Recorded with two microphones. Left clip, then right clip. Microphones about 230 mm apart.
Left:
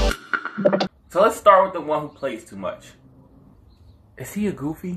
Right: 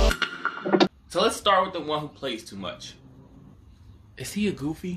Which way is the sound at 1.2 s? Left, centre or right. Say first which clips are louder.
Left 7 dB; centre.